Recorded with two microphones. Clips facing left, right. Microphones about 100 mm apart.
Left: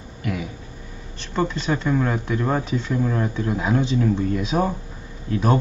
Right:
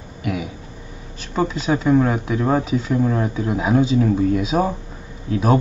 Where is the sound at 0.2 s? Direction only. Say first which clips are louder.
Right 3 dB; 5° right (ahead or behind).